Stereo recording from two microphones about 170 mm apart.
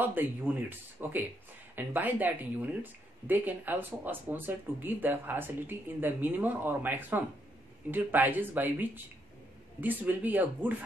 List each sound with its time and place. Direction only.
0.0 s speech: 10° right (ahead or behind)